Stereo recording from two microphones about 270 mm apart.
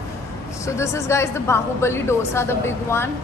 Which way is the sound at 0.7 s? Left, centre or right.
Centre.